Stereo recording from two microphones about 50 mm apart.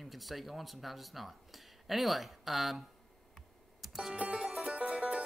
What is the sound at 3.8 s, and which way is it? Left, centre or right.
Music, centre.